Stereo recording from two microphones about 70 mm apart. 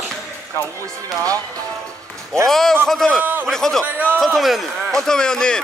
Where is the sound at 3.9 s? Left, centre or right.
Right.